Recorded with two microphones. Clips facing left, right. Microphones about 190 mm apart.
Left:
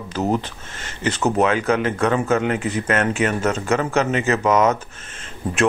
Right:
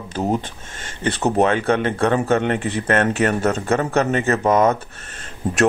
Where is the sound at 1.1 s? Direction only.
35° right (ahead or behind).